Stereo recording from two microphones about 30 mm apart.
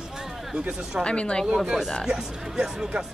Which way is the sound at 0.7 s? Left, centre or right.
Right.